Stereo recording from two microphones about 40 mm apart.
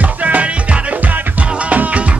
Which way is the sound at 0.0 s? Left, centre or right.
Right.